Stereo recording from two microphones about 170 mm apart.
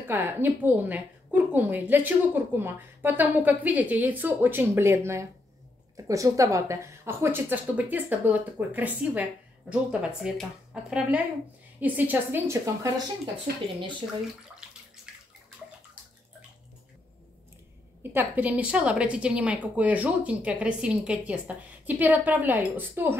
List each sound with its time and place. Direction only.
0.1 s a woman's voice: 10° right (ahead or behind)
13.5 s speech: 65° right (ahead or behind)
15.1 s bathtub: 5° right (ahead or behind)
18.1 s a woman's voice: 10° right (ahead or behind)